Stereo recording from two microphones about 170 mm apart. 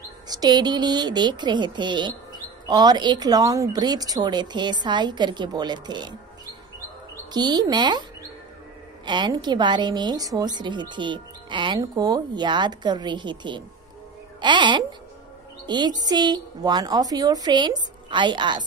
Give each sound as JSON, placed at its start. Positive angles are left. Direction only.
{"t": 0.3, "sound": "speech", "side_deg": -25}
{"t": 7.3, "sound": "speech", "side_deg": -25}
{"t": 9.0, "sound": "speech", "side_deg": -25}